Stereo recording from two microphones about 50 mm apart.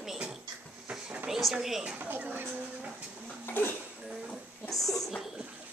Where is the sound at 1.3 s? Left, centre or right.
Centre.